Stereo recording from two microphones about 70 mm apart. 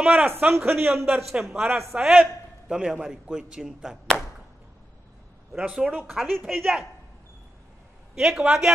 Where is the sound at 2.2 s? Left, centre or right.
Centre.